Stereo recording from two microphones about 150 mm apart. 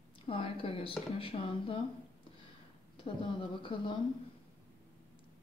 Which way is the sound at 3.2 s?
30° left (ahead or behind).